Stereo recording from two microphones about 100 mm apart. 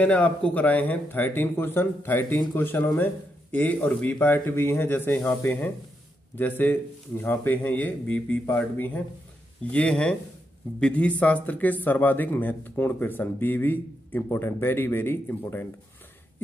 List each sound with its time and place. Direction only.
0.0 s speech: 15° left (ahead or behind)